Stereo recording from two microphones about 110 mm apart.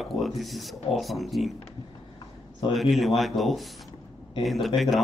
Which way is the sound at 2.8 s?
Centre (ahead or behind).